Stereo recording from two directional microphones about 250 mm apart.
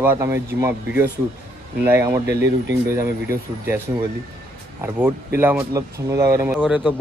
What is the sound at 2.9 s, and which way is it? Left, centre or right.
Speech, centre.